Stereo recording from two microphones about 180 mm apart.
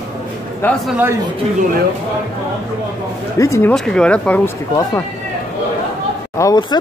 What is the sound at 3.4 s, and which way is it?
Speech, 15° left (ahead or behind).